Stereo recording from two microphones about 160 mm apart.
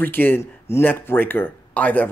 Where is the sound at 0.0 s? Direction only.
10° left (ahead or behind).